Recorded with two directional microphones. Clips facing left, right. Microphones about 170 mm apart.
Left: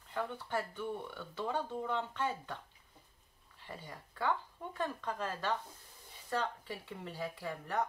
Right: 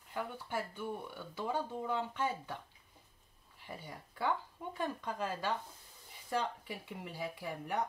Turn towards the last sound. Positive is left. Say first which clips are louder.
# left 1 dB
turn(degrees=-15)  # may be behind; listen again after turning